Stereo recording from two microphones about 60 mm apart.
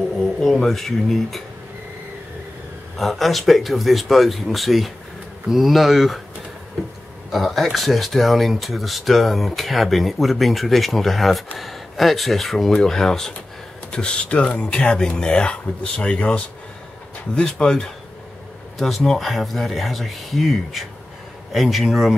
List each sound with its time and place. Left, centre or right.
0.4 s speech: centre
3.0 s speech: centre
7.2 s speech: centre
18.8 s speech: centre